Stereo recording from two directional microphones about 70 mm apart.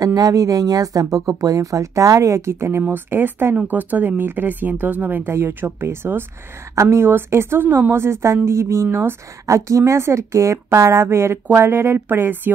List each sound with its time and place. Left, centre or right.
0.0 s speech: right
2.8 s speech: right